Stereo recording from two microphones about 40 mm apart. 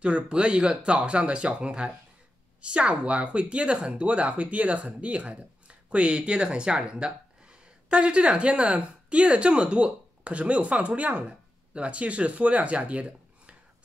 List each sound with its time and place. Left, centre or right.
0.0 s speech: right